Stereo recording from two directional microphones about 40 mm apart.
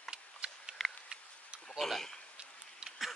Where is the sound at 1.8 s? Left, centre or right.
Centre.